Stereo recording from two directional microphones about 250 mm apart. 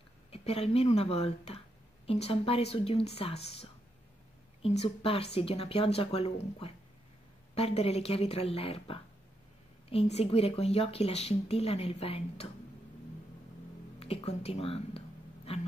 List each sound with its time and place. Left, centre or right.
0.3 s speech: left
13.9 s music: left